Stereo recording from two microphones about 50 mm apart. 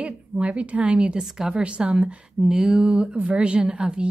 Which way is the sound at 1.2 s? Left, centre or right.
Centre.